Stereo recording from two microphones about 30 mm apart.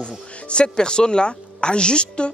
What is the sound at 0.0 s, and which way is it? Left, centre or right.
Music, left.